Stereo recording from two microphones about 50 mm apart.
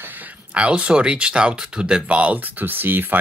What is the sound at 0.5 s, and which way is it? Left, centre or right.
Speech, right.